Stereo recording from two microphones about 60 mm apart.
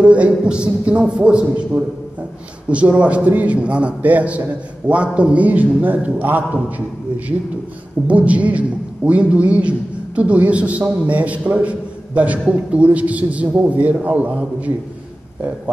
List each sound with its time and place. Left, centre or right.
0.0 s a man's voice: right
3.0 s a man's voice: right
8.1 s a man's voice: right